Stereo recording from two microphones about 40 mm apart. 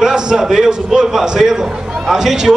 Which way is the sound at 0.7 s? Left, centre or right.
Centre.